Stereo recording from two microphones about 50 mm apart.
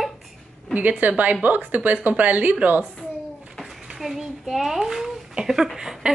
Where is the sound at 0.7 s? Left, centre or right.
Right.